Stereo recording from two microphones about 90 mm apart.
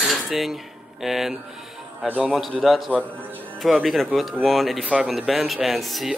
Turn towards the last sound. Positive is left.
turn(degrees=0)  # may be behind; listen again after turning